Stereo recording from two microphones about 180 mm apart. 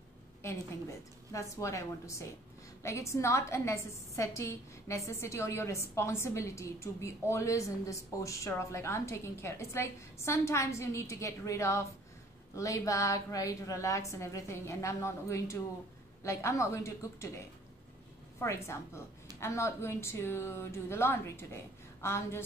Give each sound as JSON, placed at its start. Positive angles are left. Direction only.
{"t": 1.3, "sound": "a woman's voice", "side_deg": 15}
{"t": 18.4, "sound": "a woman's voice", "side_deg": 15}